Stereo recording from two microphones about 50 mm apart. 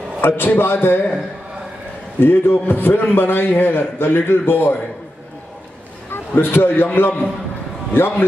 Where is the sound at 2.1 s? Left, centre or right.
Left.